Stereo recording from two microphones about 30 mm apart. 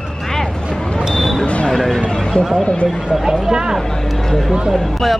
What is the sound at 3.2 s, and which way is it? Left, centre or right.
Speech, right.